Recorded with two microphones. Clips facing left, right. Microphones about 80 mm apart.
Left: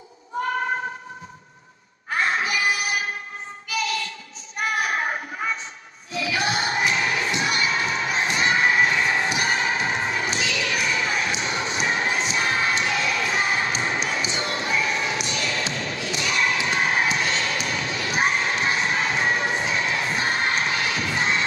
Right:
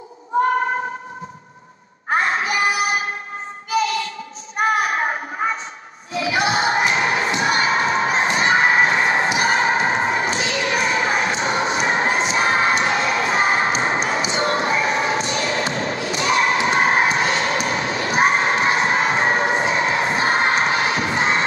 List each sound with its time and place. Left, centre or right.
2.0 s music: right
4.6 s a sound: right
14.3 s basketball bounce: right
16.2 s thump: right